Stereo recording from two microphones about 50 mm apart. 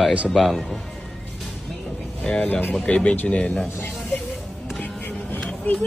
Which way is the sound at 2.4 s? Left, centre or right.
Left.